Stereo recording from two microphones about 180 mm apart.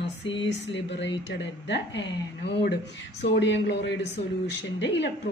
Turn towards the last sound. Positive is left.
turn(degrees=80)